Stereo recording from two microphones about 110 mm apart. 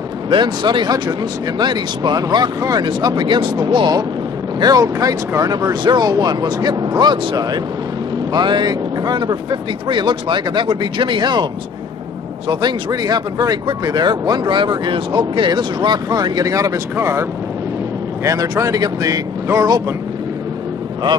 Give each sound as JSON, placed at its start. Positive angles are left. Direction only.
{"t": 0.3, "sound": "speech", "side_deg": -45}
{"t": 12.4, "sound": "speech", "side_deg": -40}